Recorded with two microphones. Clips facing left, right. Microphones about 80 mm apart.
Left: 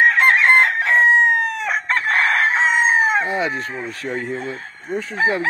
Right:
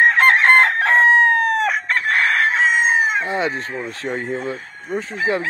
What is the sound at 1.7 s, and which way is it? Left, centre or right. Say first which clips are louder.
Chicken: even; left.